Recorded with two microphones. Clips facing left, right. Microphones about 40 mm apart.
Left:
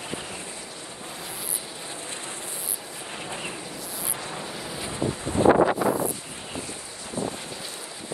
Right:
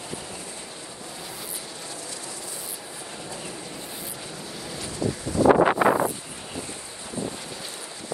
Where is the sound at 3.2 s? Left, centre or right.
Left.